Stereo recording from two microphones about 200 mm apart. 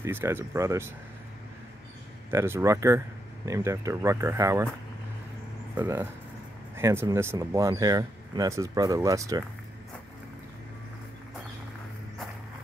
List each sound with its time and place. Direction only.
0.0 s speech: 10° right (ahead or behind)
2.3 s speech: 15° right (ahead or behind)
5.8 s speech: 10° right (ahead or behind)